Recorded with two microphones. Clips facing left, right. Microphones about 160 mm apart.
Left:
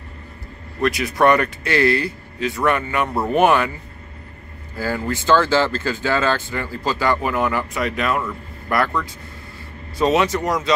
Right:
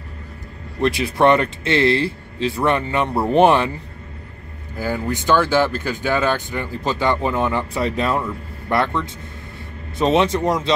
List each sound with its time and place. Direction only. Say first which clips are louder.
0.7 s speech: right 1 dB; 25° right (ahead or behind)
4.7 s speech: even; 15° right (ahead or behind)